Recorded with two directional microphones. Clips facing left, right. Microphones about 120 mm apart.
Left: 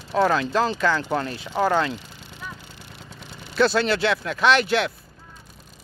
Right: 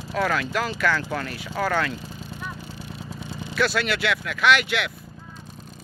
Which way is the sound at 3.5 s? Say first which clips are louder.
Left 4 dB; 30° left (ahead or behind).